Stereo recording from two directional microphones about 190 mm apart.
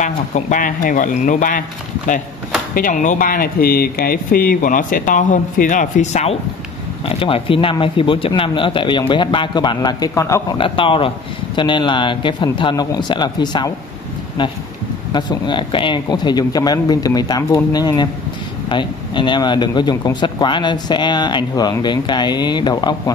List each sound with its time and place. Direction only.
0.0 s speech: 40° left (ahead or behind)
2.7 s speech: 45° left (ahead or behind); by 10.4 s 15° left (ahead or behind)
10.6 s speech: 25° left (ahead or behind)
15.1 s speech: 25° left (ahead or behind)